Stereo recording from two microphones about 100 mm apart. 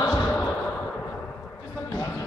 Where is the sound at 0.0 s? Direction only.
20° left (ahead or behind).